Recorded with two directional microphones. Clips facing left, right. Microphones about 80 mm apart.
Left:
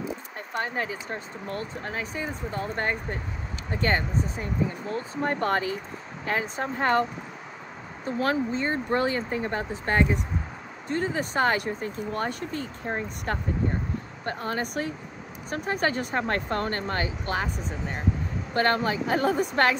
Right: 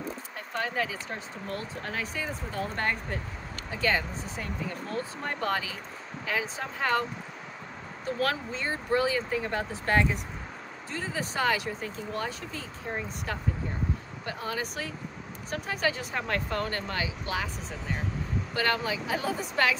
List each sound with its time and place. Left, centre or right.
1.8 s speech: left
3.7 s speech: left
4.4 s speech: left
5.4 s speech: left
8.2 s speech: left
8.6 s speech: left
9.4 s speech: left
10.9 s speech: left